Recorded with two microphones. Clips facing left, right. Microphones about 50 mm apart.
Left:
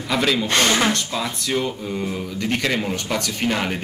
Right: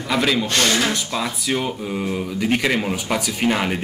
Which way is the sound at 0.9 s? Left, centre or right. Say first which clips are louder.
Even; centre.